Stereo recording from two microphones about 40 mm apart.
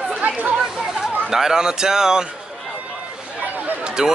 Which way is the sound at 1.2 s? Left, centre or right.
Centre.